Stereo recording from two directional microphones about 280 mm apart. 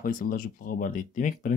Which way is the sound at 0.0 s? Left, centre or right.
Left.